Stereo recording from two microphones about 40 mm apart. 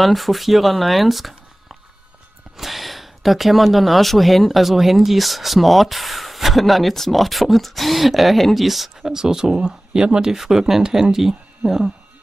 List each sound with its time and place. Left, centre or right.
0.0 s speech: centre
2.5 s speech: centre
9.1 s speech: centre